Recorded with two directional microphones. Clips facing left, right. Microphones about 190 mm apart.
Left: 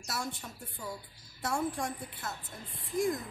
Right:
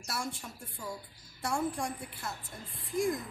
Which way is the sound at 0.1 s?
Centre (ahead or behind).